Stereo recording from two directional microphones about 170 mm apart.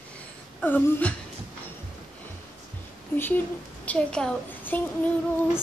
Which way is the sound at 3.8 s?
5° left (ahead or behind).